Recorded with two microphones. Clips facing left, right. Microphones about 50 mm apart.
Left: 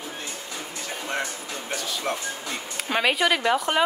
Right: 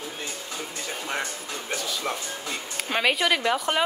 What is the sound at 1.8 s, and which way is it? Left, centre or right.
Music, centre.